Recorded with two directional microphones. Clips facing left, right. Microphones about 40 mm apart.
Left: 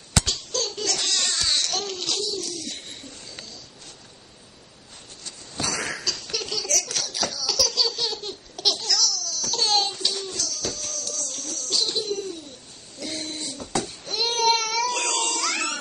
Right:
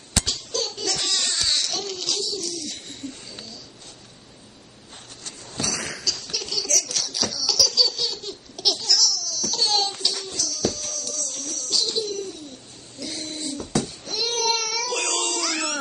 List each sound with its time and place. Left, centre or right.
0.2 s crying: centre
5.6 s laughter: centre
8.7 s baby laughter: centre
10.2 s a sound: centre
13.0 s babbling: centre